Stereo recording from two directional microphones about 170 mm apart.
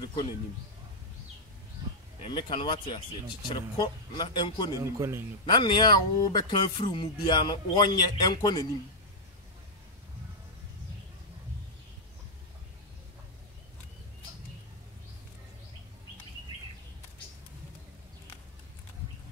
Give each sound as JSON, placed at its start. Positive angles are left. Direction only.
{"t": 0.0, "sound": "a sound", "side_deg": 25}
{"t": 2.2, "sound": "speech", "side_deg": 30}
{"t": 4.7, "sound": "speech", "side_deg": -15}
{"t": 5.4, "sound": "speech", "side_deg": 25}